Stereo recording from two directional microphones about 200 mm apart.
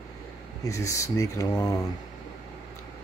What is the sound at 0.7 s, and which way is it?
Speech, 15° left (ahead or behind).